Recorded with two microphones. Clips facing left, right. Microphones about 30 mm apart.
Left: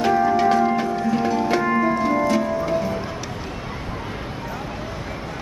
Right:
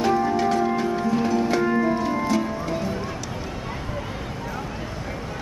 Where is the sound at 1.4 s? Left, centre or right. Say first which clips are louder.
Left 2 dB; centre.